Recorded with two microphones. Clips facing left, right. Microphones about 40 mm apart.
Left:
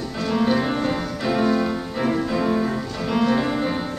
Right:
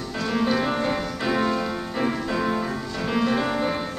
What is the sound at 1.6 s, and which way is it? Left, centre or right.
Music, centre.